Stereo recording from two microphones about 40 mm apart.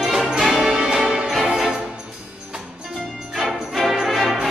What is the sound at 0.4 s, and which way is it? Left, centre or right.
Music, centre.